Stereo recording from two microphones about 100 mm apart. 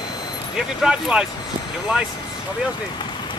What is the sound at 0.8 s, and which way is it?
Speech, 10° right (ahead or behind).